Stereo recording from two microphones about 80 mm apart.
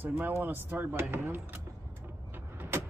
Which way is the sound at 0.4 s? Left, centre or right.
Right.